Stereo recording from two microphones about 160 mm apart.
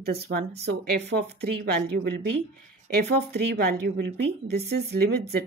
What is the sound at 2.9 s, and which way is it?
A woman's voice, 80° right.